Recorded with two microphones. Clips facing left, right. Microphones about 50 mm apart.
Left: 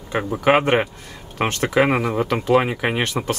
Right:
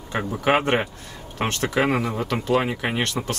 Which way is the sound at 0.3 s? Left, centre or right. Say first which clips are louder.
Left 4 dB; centre.